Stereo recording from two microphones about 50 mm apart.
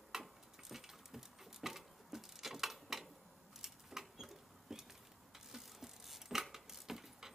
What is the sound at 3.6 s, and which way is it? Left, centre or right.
Wood, centre.